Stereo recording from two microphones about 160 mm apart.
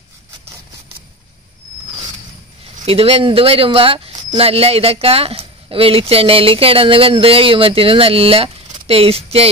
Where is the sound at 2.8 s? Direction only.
35° right (ahead or behind).